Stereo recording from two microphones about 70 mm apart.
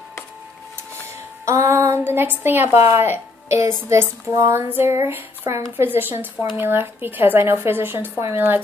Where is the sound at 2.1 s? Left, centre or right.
Right.